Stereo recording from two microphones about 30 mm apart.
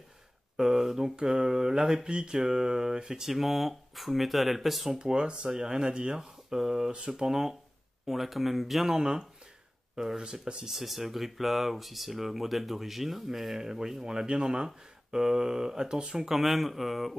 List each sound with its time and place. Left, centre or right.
0.6 s speech: centre
2.0 s speech: right
3.3 s speech: centre
4.9 s speech: right
8.1 s speech: centre
8.9 s speech: right
10.3 s speech: right
10.7 s speech: centre; by 16.2 s right
16.2 s speech: centre